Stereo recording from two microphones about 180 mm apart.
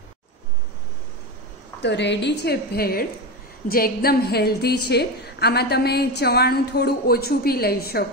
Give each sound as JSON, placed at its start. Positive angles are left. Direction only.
{"t": 1.8, "sound": "a woman's voice", "side_deg": 75}